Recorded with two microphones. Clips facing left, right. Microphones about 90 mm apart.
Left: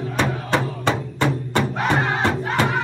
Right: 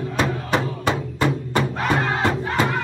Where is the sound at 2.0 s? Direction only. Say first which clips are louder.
Even; 15° left (ahead or behind).